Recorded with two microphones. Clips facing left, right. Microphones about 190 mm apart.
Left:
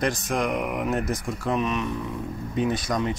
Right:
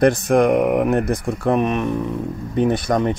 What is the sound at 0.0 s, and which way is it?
Speech, 60° right (ahead or behind).